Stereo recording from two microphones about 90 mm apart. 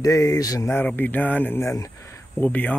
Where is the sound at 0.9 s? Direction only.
20° left (ahead or behind).